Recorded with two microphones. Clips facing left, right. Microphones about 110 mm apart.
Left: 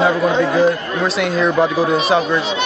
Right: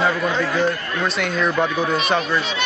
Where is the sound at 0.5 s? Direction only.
Centre (ahead or behind).